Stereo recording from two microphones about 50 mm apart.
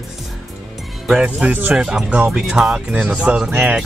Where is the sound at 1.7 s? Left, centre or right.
Centre; by 3.4 s right.